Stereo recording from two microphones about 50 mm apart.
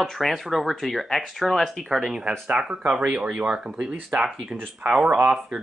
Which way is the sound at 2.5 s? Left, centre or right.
Right.